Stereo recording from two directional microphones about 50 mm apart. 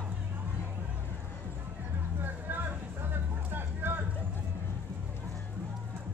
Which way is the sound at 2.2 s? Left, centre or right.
Right.